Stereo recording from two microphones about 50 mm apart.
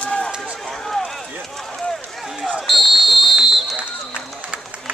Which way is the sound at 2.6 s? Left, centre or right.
Centre.